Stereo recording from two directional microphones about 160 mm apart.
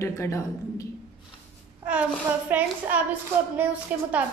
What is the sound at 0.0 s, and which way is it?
Speech, 15° left (ahead or behind).